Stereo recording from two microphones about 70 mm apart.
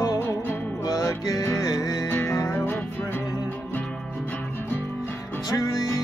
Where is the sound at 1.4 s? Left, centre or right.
Left.